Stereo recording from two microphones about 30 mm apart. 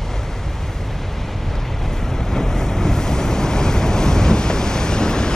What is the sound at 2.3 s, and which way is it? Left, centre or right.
Waves, centre.